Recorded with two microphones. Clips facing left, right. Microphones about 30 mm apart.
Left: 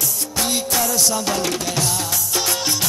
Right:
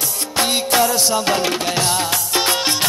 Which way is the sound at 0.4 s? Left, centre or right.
Right.